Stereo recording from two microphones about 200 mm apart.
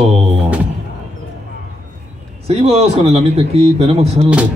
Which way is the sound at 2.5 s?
30° right (ahead or behind).